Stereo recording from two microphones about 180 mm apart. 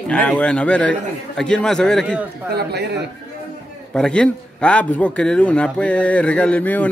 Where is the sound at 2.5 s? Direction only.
65° right (ahead or behind).